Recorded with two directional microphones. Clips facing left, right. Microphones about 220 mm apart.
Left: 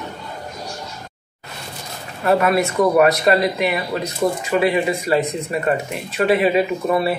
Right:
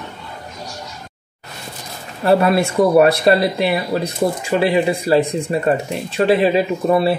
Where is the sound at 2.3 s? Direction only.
30° right (ahead or behind).